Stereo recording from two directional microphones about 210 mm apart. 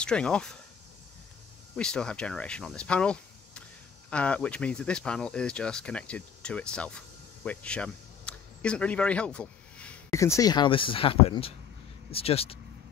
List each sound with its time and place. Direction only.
0.0 s speech: 5° left (ahead or behind)
1.8 s speech: 5° left (ahead or behind); by 12.5 s 30° left (ahead or behind)